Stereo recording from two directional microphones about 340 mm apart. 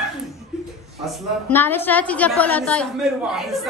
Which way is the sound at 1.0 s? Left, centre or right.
Centre.